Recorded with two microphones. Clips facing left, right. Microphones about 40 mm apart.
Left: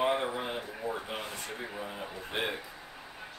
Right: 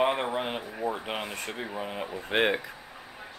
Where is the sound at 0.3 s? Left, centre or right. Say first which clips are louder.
Right 4 dB; right.